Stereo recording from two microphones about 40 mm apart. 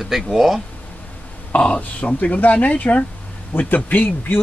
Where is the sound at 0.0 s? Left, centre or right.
Centre.